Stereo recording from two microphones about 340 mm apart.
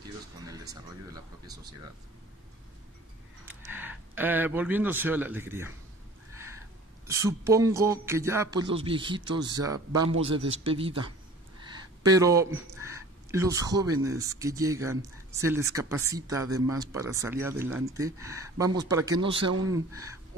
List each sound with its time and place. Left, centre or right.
0.5 s speech: centre
3.4 s speech: centre
7.1 s speech: centre
11.6 s a sound: centre
12.7 s speech: centre